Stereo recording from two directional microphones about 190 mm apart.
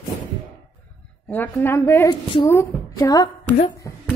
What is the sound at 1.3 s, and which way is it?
A woman's voice, 10° left (ahead or behind).